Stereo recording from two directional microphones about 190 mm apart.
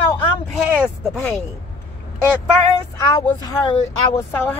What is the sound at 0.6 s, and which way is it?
Speech, 5° right (ahead or behind).